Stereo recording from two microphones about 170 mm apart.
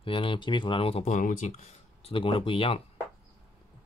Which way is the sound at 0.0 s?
30° left (ahead or behind).